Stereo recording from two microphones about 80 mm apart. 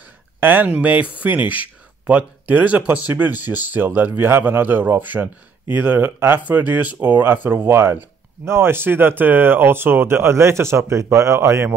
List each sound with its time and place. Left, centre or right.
0.4 s speech: right